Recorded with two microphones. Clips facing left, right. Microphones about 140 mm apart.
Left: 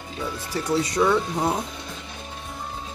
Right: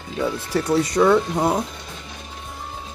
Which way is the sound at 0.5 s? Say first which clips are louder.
Right 3 dB; 55° right (ahead or behind).